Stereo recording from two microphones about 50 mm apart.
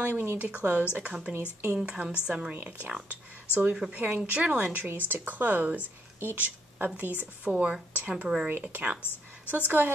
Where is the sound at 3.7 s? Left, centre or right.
Right.